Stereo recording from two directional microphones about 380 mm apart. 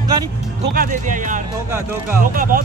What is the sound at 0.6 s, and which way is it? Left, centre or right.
Speech, right.